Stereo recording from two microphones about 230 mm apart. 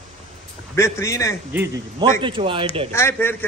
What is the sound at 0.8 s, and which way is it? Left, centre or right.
Speech, centre.